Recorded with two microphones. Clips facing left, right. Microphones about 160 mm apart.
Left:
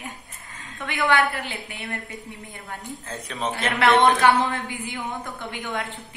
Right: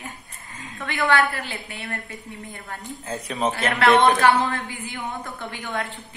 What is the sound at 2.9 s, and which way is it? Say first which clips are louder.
Speech: right 7 dB; 10° right (ahead or behind).